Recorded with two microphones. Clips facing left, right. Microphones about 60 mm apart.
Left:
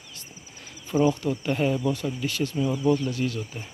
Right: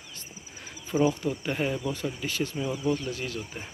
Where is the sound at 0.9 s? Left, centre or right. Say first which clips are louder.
Left 2 dB; centre.